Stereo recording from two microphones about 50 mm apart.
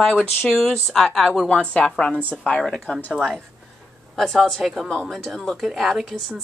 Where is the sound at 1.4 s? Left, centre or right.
Left.